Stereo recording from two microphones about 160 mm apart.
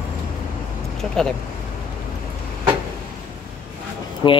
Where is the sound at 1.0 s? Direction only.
5° left (ahead or behind).